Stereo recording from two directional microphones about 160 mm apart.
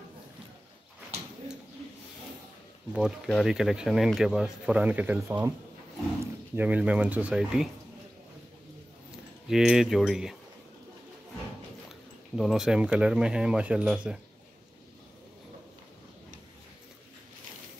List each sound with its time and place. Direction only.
2.9 s speech: centre (ahead or behind)
6.5 s speech: 10° right (ahead or behind)
9.5 s speech: centre (ahead or behind)
12.4 s speech: centre (ahead or behind)